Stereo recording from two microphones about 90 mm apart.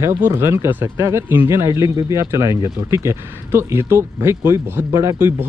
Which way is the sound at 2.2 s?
35° right (ahead or behind).